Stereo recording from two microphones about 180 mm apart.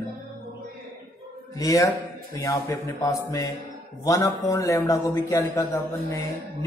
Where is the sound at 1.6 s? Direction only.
20° left (ahead or behind).